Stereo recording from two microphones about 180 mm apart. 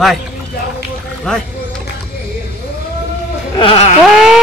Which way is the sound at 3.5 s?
30° left (ahead or behind).